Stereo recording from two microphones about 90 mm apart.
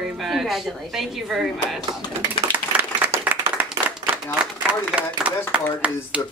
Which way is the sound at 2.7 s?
25° right (ahead or behind).